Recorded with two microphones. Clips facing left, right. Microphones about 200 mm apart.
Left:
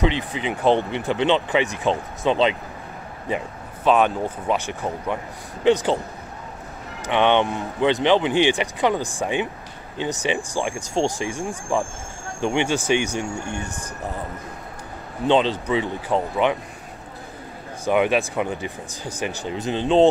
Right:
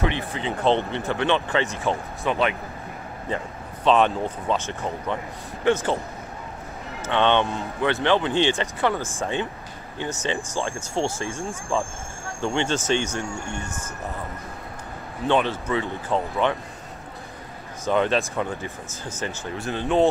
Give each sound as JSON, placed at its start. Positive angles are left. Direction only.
{"t": 0.0, "sound": "speech", "side_deg": 15}
{"t": 3.3, "sound": "speech", "side_deg": 10}
{"t": 7.1, "sound": "speech", "side_deg": 15}
{"t": 15.2, "sound": "speech", "side_deg": 20}
{"t": 17.8, "sound": "speech", "side_deg": 15}